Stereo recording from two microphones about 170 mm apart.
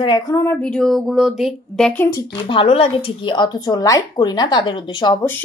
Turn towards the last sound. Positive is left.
turn(degrees=25)  # may be behind; listen again after turning